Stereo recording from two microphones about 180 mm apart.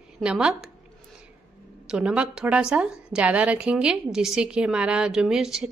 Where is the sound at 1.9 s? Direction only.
5° right (ahead or behind).